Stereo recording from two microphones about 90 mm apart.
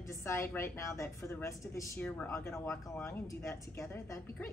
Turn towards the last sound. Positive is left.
turn(degrees=30)  # may be behind; listen again after turning